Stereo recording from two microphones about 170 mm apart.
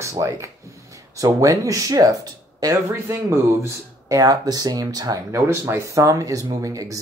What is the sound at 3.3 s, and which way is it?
Speech, 15° right (ahead or behind).